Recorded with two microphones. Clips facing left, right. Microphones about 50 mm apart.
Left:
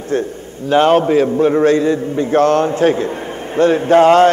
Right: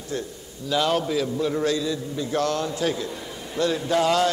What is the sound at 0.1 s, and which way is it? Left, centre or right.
A man's voice, left.